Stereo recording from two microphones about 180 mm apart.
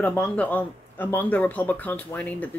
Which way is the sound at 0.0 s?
10° left (ahead or behind).